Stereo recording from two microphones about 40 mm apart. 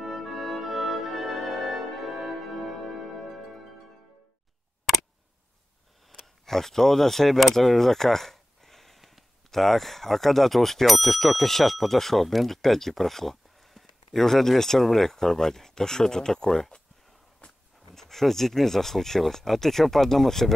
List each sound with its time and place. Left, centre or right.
0.0 s music: centre
6.4 s speech: centre
17.4 s a sound: left
17.9 s speech: centre